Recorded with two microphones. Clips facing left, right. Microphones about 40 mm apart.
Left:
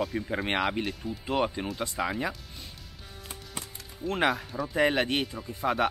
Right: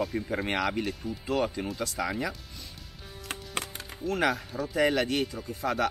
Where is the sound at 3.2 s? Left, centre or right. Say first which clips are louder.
Right 6 dB; right.